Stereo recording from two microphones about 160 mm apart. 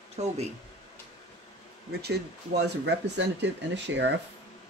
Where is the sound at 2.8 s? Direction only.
90° right.